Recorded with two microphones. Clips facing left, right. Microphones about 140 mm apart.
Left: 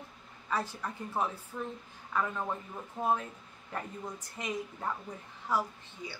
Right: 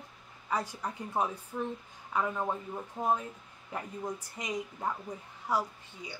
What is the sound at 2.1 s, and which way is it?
Speech, 15° right (ahead or behind).